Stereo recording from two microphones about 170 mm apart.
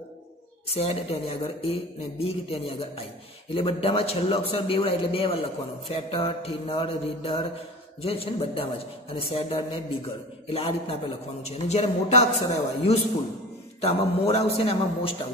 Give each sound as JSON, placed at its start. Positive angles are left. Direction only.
{"t": 0.7, "sound": "a man's voice", "side_deg": 35}